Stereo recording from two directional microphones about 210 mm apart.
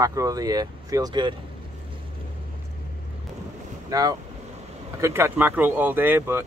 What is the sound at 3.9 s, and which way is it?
Speech, 15° right (ahead or behind).